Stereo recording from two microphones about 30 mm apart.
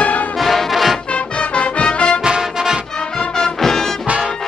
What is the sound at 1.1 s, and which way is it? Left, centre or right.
Music, left.